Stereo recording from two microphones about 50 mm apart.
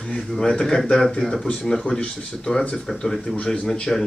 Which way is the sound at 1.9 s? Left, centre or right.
Left.